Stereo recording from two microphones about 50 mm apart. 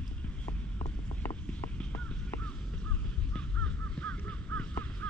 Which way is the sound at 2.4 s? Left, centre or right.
Left.